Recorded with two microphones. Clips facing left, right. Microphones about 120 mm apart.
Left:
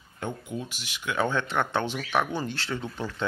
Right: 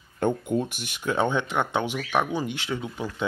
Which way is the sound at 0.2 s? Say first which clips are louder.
Right 9 dB; 55° right (ahead or behind).